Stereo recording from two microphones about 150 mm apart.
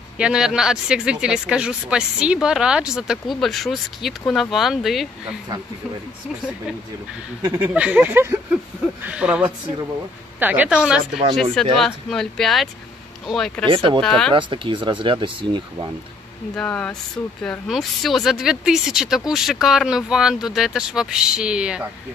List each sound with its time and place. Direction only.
0.2 s speech: 5° right (ahead or behind)
7.4 s speech: 10° right (ahead or behind); by 13.7 s 5° left (ahead or behind)
13.7 s speech: 35° right (ahead or behind)
14.0 s speech: 5° left (ahead or behind)
14.3 s speech: 35° right (ahead or behind)
16.5 s speech: 10° left (ahead or behind); by 21.8 s 5° right (ahead or behind)